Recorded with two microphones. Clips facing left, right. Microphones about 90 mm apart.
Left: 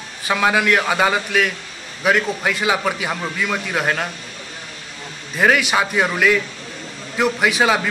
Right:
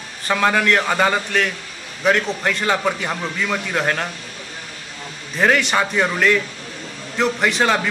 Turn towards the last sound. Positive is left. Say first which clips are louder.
# left 1 dB
turn(degrees=5)  # may be behind; listen again after turning